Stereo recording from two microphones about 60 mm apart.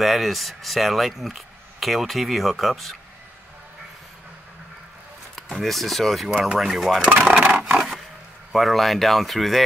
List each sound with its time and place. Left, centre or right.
0.0 s speech: centre
5.5 s speech: centre
7.1 s speech: centre
8.5 s speech: centre